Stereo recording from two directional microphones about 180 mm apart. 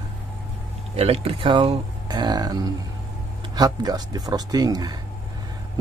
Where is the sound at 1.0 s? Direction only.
30° right (ahead or behind).